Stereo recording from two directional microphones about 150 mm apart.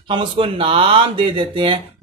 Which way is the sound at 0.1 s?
35° right (ahead or behind).